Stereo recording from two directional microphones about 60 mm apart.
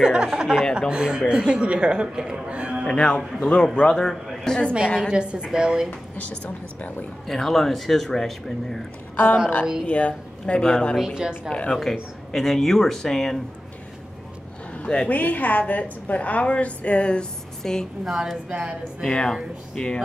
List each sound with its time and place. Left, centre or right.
0.0 s speech: centre
2.9 s speech: centre
5.0 s speech: centre
6.4 s a woman's voice: left
7.2 s speech: centre
9.1 s a woman's voice: left
9.8 s speech: centre
11.8 s speech: centre
14.7 s a sound: centre
15.0 s a woman's voice: left
18.0 s speech: centre
18.5 s a woman's voice: centre
19.0 s speech: centre